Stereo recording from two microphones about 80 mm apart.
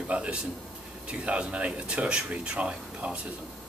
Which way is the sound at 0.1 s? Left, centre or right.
Centre.